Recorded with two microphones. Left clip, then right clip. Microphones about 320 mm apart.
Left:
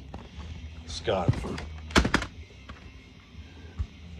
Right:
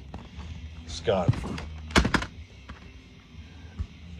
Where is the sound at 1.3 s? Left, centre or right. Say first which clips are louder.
Even; centre.